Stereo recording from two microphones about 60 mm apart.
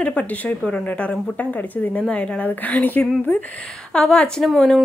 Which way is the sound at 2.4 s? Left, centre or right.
Left.